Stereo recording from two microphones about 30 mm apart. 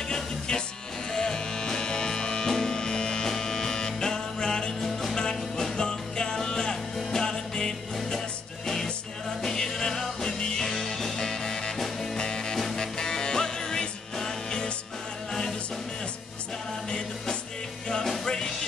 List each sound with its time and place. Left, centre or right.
0.1 s music: left
9.4 s music: centre
11.8 s music: centre
12.2 s music: left
18.2 s music: left